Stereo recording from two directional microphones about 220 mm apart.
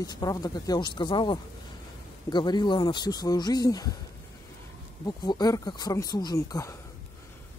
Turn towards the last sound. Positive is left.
turn(degrees=15)  # may be behind; listen again after turning